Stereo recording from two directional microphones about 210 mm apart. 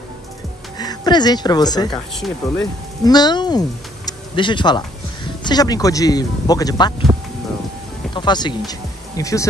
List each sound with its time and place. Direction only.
0.7 s a woman's voice: 20° left (ahead or behind)
1.9 s speech: centre (ahead or behind)
3.1 s speech: 20° left (ahead or behind)
8.1 s speech: 20° left (ahead or behind)